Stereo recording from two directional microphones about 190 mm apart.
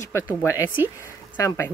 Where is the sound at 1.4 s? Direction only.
15° left (ahead or behind).